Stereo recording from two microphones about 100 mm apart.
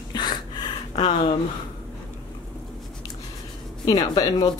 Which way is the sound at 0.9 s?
75° left (ahead or behind).